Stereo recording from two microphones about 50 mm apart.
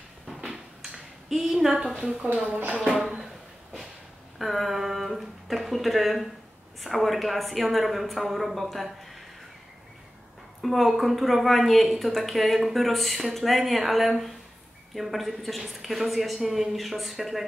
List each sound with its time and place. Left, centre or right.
0.3 s a sound: centre
2.8 s speech: centre
4.4 s a woman's voice: centre
10.6 s a woman's voice: centre